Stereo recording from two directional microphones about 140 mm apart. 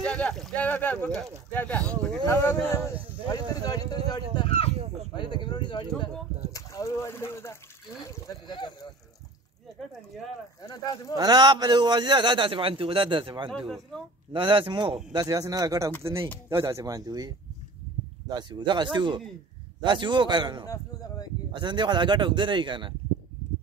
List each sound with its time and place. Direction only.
0.0 s speech: 5° left (ahead or behind)
2.2 s a man's voice: 20° left (ahead or behind)
8.5 s speech: 30° left (ahead or behind)
10.6 s a man's voice: 25° left (ahead or behind)
11.1 s a man's voice: 30° right (ahead or behind)
15.1 s speech: 25° right (ahead or behind)
18.3 s a man's voice: 30° right (ahead or behind)
20.6 s a man's voice: 25° left (ahead or behind)
21.5 s a man's voice: 35° right (ahead or behind)